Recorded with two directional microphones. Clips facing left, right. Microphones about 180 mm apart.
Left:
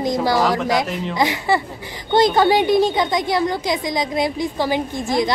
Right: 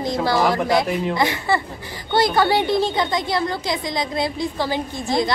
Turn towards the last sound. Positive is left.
turn(degrees=15)  # may be behind; listen again after turning